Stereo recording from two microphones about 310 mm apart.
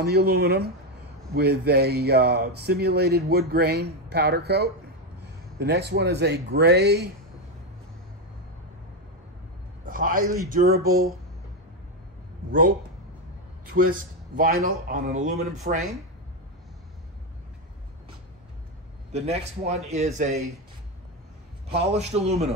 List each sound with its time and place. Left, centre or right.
0.0 s speech: right
9.8 s a man's voice: right
12.4 s a man's voice: right
13.9 s speech: right
14.5 s speech: right
14.9 s a man's voice: right
19.1 s a man's voice: right
20.3 s speech: centre
21.6 s a man's voice: centre